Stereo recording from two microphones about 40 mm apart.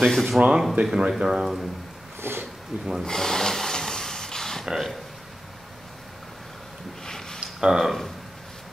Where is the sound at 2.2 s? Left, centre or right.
Right.